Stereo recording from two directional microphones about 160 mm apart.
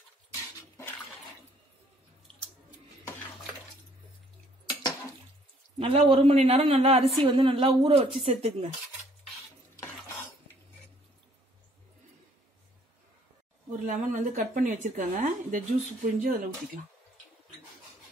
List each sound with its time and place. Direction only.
0.3 s dishes: 15° left (ahead or behind)
5.8 s a woman's voice: 35° right (ahead or behind)
13.7 s a woman's voice: 60° right (ahead or behind)